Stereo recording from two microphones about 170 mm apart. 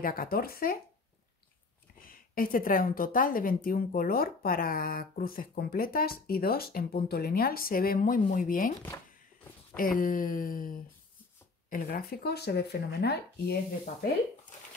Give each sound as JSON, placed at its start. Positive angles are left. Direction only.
{"t": 0.0, "sound": "a woman's voice", "side_deg": 60}
{"t": 2.0, "sound": "a woman's voice", "side_deg": 55}
{"t": 9.8, "sound": "a woman's voice", "side_deg": 55}